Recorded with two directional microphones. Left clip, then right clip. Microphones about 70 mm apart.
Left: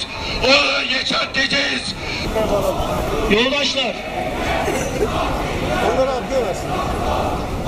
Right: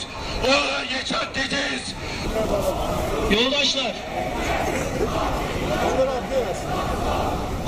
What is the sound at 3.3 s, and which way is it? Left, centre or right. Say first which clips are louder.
Speech: left 3 dB; left.